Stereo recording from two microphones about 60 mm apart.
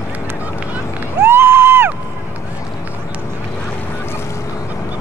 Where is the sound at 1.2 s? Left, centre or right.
Right.